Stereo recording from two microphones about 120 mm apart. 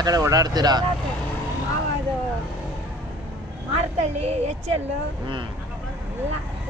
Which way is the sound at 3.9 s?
65° right (ahead or behind).